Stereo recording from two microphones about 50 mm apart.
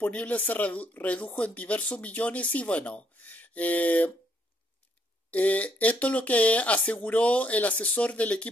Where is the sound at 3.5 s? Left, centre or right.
Left.